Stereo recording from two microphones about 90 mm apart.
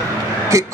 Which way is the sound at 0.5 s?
35° right (ahead or behind).